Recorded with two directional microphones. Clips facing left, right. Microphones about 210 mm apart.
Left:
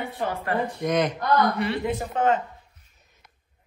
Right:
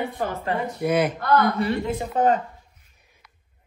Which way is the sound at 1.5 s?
40° right (ahead or behind).